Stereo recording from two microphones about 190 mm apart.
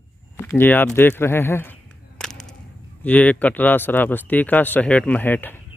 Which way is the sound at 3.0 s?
10° left (ahead or behind).